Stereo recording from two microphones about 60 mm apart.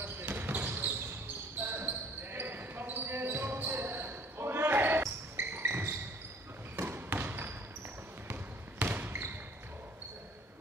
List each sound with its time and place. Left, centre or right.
0.0 s basketball bounce: right